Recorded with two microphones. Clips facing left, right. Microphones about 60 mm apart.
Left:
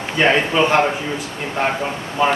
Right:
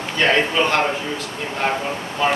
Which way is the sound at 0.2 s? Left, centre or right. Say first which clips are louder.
Left 2 dB; centre.